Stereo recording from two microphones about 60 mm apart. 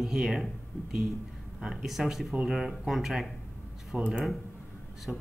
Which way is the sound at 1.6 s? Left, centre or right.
Centre.